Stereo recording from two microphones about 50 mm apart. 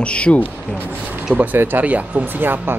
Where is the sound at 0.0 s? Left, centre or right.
Left.